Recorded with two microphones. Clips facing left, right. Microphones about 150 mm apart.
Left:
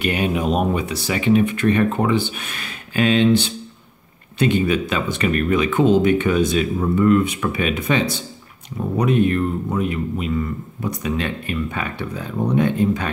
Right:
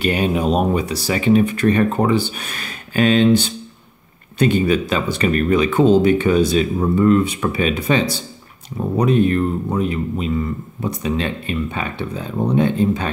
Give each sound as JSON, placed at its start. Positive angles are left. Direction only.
{"t": 0.0, "sound": "speech", "side_deg": -35}